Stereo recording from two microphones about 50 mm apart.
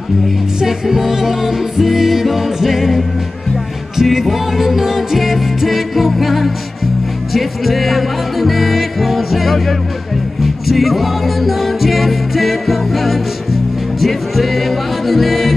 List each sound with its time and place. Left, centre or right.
0.6 s music: centre